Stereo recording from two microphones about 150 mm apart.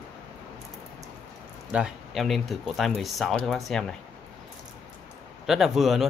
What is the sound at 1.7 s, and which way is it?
Speech, 5° right (ahead or behind).